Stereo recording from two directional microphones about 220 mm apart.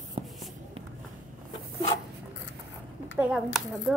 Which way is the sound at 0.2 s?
25° right (ahead or behind).